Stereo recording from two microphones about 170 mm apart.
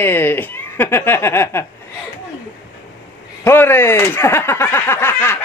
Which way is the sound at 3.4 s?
15° left (ahead or behind).